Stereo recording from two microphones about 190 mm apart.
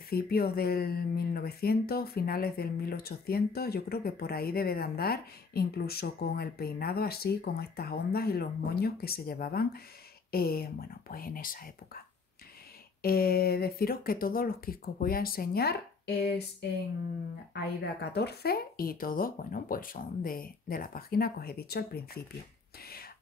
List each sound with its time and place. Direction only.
0.1 s speech: 55° left (ahead or behind)
13.0 s speech: 50° left (ahead or behind)
16.2 s a sound: 55° left (ahead or behind)
18.1 s speech: 60° left (ahead or behind)